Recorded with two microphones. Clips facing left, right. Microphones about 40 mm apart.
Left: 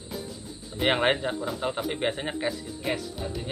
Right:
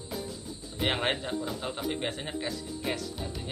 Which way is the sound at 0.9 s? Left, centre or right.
Centre.